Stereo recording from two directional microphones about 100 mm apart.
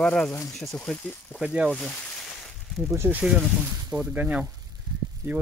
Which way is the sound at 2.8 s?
30° right (ahead or behind).